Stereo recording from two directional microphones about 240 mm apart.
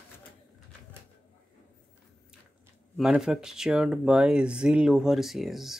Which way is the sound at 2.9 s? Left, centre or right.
Centre.